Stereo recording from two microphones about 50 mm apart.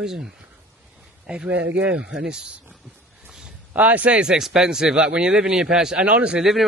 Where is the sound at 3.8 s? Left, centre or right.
Right.